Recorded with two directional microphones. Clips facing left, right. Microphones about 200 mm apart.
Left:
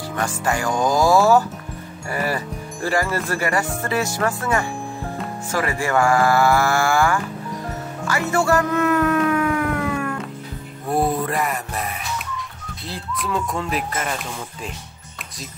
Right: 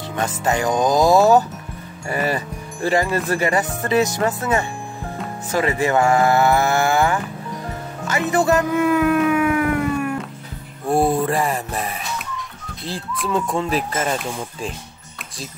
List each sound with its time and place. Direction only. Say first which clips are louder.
0.4 s music: right 3 dB; 20° right (ahead or behind)
8.6 s music: right 2 dB; 10° right (ahead or behind)
10.9 s music: right 3 dB; 30° right (ahead or behind)
13.3 s music: right 4 dB; 25° right (ahead or behind)